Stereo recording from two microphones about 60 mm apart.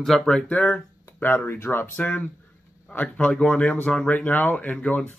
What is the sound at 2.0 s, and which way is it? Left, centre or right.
Speech, left.